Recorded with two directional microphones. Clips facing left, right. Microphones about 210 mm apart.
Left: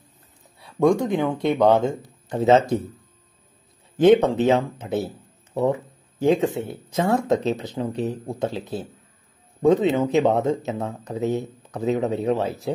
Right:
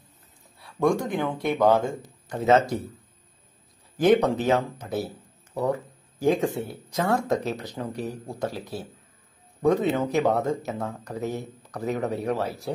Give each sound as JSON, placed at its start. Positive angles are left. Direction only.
{"t": 1.0, "sound": "speech", "side_deg": 20}
{"t": 4.0, "sound": "a man's voice", "side_deg": 25}